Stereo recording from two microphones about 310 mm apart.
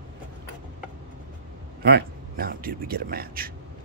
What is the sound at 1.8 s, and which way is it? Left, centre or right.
Speech, right.